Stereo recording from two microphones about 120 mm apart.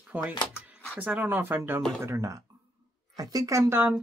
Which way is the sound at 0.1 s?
15° right (ahead or behind).